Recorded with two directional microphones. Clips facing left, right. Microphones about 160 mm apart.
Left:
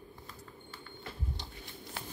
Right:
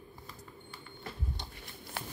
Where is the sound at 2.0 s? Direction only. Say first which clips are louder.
Right 3 dB; 60° right (ahead or behind).